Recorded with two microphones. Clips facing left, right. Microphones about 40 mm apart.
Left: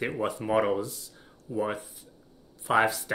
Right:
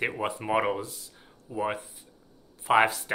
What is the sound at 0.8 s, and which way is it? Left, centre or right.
Speech, right.